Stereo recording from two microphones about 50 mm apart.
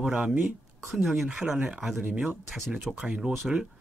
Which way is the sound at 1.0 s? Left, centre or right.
Centre.